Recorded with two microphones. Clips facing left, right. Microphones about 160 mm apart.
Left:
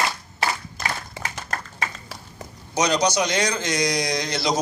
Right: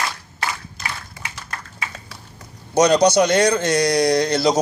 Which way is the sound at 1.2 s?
45° left (ahead or behind).